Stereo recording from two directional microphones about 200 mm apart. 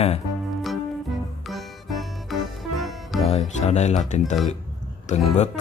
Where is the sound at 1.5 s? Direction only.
Centre (ahead or behind).